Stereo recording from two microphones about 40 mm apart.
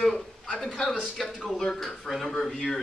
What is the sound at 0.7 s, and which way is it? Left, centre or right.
Speech, centre.